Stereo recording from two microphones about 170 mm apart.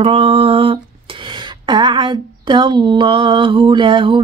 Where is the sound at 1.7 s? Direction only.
25° right (ahead or behind).